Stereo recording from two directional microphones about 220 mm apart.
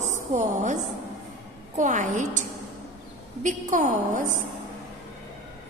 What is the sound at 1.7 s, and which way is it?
Speech, 35° right (ahead or behind).